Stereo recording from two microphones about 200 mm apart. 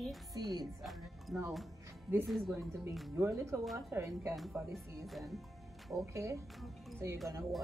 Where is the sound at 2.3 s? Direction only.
Centre (ahead or behind).